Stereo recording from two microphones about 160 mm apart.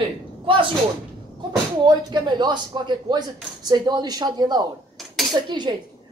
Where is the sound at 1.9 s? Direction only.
25° right (ahead or behind).